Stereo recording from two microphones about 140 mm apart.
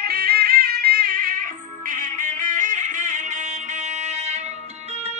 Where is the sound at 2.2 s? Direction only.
65° right (ahead or behind).